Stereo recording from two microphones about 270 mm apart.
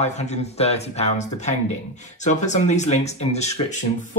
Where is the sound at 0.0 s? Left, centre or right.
Left.